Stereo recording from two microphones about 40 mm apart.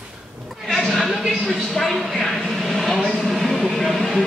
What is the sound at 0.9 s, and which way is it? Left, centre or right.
Speech, centre.